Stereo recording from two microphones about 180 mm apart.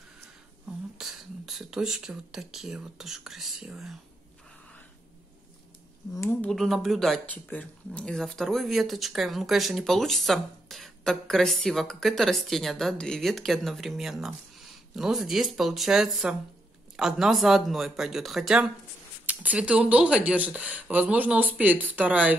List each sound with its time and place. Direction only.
0.9 s speech: centre (ahead or behind)
6.1 s speech: 15° left (ahead or behind)
6.5 s speech: centre (ahead or behind)